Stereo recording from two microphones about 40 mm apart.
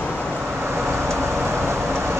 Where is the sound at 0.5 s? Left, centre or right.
Right.